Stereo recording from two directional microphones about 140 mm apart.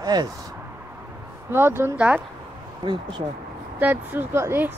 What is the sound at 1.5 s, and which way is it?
Speech, 15° right (ahead or behind).